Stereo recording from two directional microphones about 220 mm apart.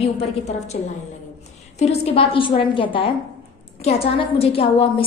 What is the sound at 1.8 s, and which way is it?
A woman's voice, 30° left (ahead or behind).